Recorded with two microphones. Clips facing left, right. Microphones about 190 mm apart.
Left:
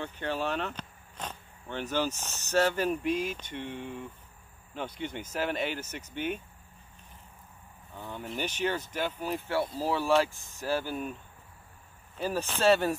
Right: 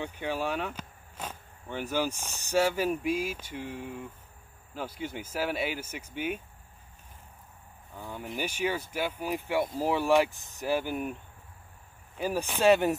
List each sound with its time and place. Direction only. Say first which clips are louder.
0.0 s speech: right 1 dB; 10° right (ahead or behind)
7.9 s speech: even; 10° right (ahead or behind)
12.2 s speech: right 1 dB; 15° right (ahead or behind)